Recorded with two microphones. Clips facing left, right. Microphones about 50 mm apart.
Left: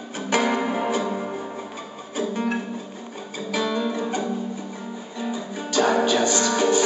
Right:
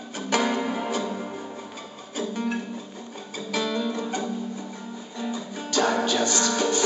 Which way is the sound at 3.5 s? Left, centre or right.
Centre.